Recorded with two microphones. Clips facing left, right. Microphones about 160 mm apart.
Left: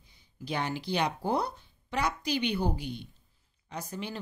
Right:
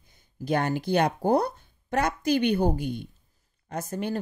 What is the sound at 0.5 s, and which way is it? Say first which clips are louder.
Speech: right 7 dB; 50° right (ahead or behind).